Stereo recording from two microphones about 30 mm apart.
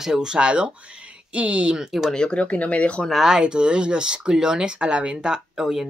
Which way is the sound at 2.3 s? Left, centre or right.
Left.